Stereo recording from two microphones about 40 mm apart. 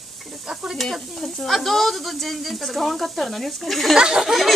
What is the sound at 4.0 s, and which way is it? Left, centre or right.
Speech, centre.